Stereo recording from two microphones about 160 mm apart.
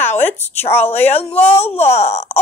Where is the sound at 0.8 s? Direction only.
40° left (ahead or behind).